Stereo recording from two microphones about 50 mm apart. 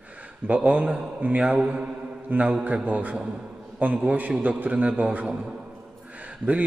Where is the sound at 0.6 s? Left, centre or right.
Right.